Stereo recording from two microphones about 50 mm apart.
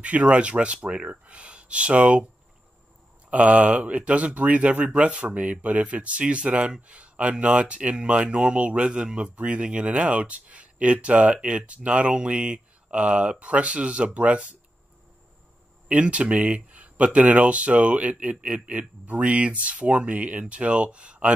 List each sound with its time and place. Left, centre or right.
0.0 s speech: right
3.3 s speech: right
15.9 s speech: right